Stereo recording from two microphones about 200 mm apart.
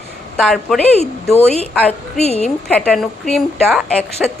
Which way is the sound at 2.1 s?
30° left (ahead or behind).